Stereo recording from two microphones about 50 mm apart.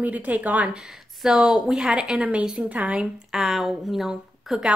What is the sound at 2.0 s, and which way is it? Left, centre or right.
A woman's voice, right.